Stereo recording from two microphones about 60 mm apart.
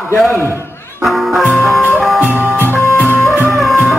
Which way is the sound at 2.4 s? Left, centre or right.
Right.